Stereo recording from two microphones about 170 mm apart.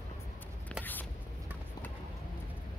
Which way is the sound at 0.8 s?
10° left (ahead or behind).